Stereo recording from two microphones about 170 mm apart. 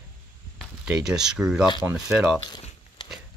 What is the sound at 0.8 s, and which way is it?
Speech, 5° right (ahead or behind).